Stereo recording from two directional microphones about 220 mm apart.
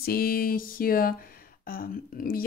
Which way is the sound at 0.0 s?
45° left (ahead or behind).